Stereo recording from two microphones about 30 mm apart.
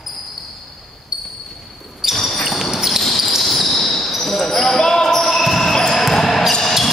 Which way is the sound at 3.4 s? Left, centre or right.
Centre.